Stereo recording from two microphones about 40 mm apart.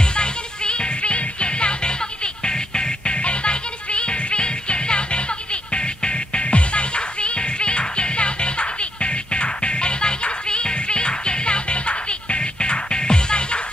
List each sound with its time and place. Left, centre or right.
0.0 s music: left